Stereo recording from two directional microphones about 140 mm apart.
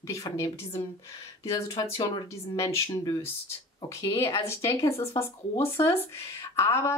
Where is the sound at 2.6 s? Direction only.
20° left (ahead or behind).